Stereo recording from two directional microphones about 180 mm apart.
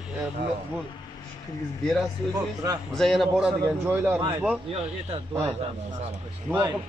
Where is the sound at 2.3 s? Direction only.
20° right (ahead or behind).